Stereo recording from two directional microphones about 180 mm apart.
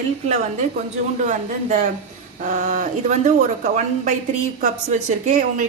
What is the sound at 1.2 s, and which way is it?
A woman's voice, 45° right (ahead or behind).